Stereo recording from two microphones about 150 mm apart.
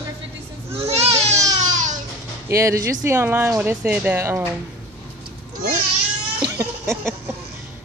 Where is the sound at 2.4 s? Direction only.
20° right (ahead or behind).